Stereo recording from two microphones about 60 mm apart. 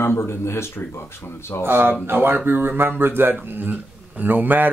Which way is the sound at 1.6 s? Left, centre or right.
Right.